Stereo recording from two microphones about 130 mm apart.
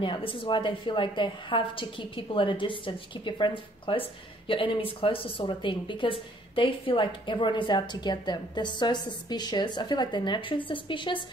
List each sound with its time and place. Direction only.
0.0 s a woman's voice: 40° left (ahead or behind)